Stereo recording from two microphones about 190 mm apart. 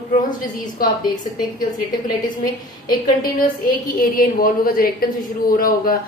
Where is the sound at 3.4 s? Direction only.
45° left (ahead or behind).